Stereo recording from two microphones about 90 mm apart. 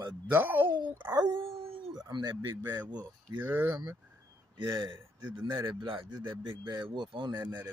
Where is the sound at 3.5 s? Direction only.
25° right (ahead or behind).